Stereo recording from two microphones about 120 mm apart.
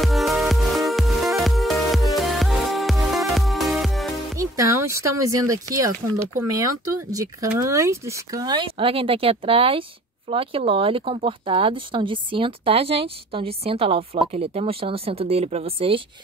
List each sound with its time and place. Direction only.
0.0 s music: centre (ahead or behind)
4.4 s speech: 25° right (ahead or behind); by 16.0 s 50° right (ahead or behind)